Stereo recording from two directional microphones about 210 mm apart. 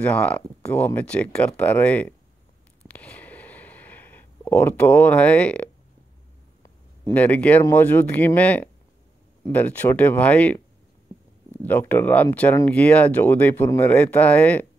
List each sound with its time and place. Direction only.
0.0 s speech: 5° left (ahead or behind)
2.9 s a sound: 5° left (ahead or behind)
6.6 s speech: 10° left (ahead or behind)